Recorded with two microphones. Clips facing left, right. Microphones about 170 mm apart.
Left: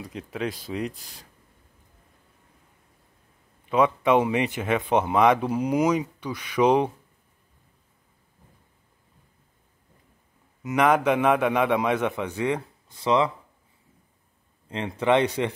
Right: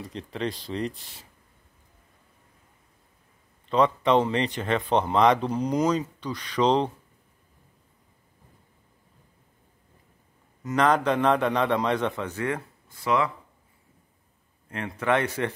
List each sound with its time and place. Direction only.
0.0 s speech: centre (ahead or behind)
3.6 s speech: 5° left (ahead or behind)
10.6 s speech: 10° left (ahead or behind)
14.7 s speech: 20° left (ahead or behind)